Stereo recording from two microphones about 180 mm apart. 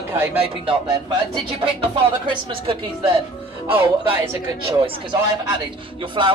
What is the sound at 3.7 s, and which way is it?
Speech, 10° right (ahead or behind).